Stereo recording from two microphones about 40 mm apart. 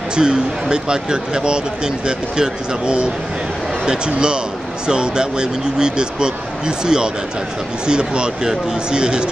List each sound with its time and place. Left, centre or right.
0.1 s speech: right